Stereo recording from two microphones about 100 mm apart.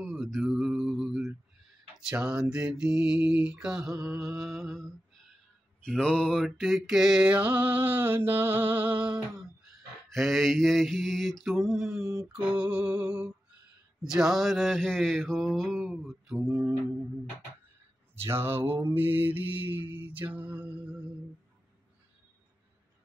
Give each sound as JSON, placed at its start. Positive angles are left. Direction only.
{"t": 0.0, "sound": "mantra", "side_deg": 0}
{"t": 12.0, "sound": "a sound", "side_deg": -35}
{"t": 12.3, "sound": "mantra", "side_deg": -10}
{"t": 18.1, "sound": "mantra", "side_deg": -25}